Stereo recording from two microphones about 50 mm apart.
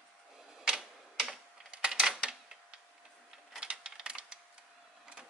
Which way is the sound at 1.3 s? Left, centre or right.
Centre.